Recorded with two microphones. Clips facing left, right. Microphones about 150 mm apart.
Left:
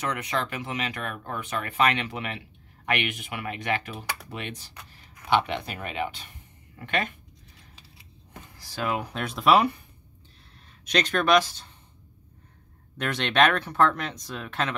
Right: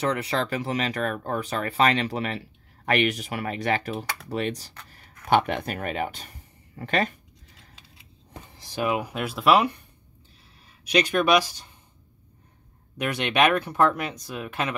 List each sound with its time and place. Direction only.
0.0 s speech: 30° right (ahead or behind)
5.3 s speech: 50° right (ahead or behind)
8.3 s speech: 20° right (ahead or behind); by 9.8 s centre (ahead or behind)
10.9 s speech: 10° right (ahead or behind)
12.9 s speech: 10° right (ahead or behind)